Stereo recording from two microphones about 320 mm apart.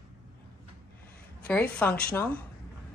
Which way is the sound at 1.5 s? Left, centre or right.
Centre.